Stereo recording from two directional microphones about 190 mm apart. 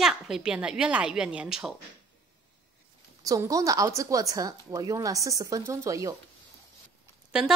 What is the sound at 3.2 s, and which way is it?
Speech, 20° right (ahead or behind).